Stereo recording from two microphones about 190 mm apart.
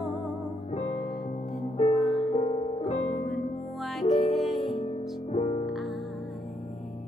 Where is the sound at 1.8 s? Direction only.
30° left (ahead or behind).